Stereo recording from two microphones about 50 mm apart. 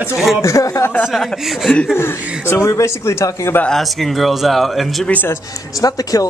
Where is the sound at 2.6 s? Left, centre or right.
Left.